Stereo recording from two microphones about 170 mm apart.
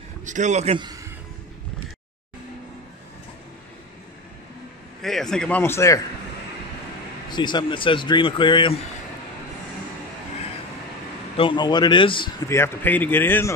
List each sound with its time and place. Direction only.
0.2 s a man's voice: 45° right (ahead or behind)
5.0 s a man's voice: centre (ahead or behind)
7.2 s speech: 25° left (ahead or behind)
11.3 s speech: 30° left (ahead or behind)
12.4 s a man's voice: 15° left (ahead or behind)